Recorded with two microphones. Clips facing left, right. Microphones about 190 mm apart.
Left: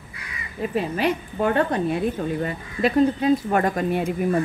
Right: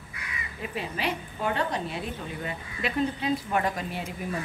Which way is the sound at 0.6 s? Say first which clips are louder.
Left 10 dB; 45° left (ahead or behind).